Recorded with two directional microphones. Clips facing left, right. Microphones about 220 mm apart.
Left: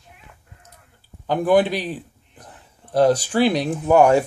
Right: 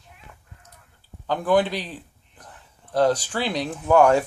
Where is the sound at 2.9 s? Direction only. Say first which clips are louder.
Left 5 dB; 10° left (ahead or behind).